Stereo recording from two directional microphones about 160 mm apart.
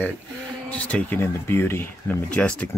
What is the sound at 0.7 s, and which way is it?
Speech, 10° left (ahead or behind).